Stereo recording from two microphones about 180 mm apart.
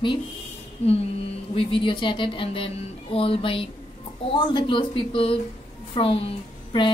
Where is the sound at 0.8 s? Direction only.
35° left (ahead or behind).